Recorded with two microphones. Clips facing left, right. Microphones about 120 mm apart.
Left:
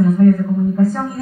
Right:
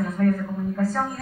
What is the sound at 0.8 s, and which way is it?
Speech, centre (ahead or behind).